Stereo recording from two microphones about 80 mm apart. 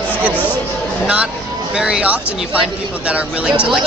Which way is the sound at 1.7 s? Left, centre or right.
Centre.